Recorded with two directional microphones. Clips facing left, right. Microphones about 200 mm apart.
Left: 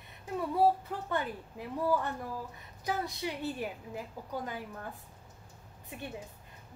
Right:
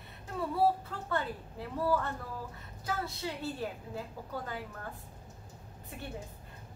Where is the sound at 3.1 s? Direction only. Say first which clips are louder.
Left 2 dB; 15° left (ahead or behind).